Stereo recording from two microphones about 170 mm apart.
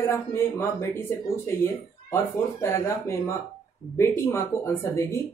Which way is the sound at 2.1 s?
15° left (ahead or behind).